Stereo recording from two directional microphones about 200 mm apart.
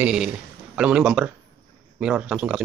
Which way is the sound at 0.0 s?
5° right (ahead or behind).